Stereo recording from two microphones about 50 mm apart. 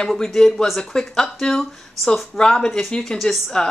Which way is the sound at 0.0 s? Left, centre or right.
Centre.